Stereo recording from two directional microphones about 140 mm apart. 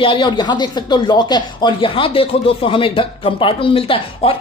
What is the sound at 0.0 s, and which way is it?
Speech, 35° left (ahead or behind).